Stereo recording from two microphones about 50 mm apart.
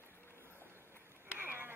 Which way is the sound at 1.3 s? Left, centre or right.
Right.